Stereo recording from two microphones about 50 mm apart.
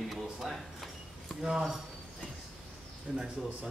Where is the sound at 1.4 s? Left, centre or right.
Centre.